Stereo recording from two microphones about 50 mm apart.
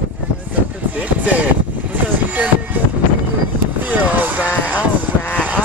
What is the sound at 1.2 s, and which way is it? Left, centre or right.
Speech, right.